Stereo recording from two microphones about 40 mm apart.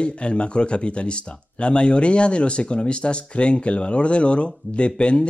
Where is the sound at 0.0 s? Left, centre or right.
Left.